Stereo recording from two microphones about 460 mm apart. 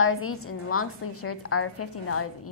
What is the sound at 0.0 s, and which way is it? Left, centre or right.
A woman's voice, left.